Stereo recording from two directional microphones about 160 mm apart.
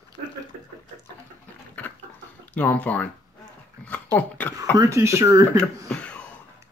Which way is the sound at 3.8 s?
10° left (ahead or behind).